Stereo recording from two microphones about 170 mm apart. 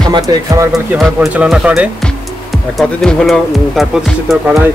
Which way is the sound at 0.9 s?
5° right (ahead or behind).